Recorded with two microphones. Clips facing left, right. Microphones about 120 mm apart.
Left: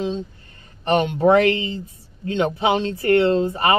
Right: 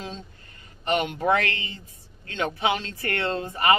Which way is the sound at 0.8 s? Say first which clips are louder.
Left 7 dB; 30° left (ahead or behind).